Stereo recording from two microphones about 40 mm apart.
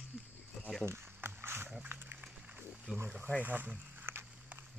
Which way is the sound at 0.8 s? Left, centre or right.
Right.